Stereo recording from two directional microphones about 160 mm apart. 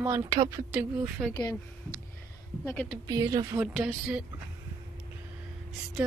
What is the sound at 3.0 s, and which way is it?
Speech, 20° right (ahead or behind).